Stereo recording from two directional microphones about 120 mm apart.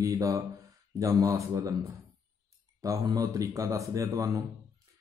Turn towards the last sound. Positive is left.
turn(degrees=-25)  # may be behind; listen again after turning